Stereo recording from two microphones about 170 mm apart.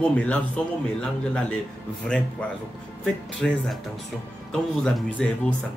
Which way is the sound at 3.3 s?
5° left (ahead or behind).